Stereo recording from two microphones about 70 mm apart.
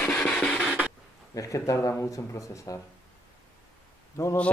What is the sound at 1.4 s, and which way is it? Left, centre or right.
Speech, left.